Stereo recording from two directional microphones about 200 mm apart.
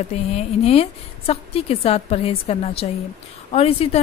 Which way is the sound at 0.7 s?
30° left (ahead or behind).